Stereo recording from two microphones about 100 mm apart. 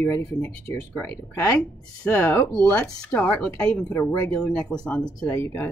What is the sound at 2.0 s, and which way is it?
Speech, 25° left (ahead or behind).